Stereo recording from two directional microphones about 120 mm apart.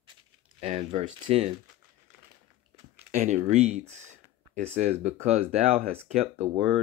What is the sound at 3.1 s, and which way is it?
Speech, 85° right.